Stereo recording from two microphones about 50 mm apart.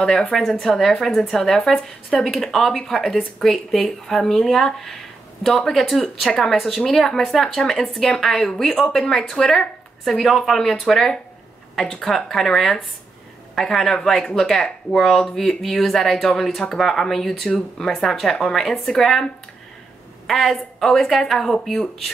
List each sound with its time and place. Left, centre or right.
0.0 s a woman's voice: centre
20.2 s speech: centre